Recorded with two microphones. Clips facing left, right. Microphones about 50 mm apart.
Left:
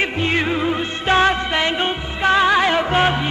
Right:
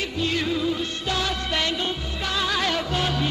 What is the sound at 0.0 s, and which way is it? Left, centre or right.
Music, left.